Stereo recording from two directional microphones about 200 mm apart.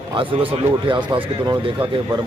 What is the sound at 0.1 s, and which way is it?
Speech, 25° right (ahead or behind).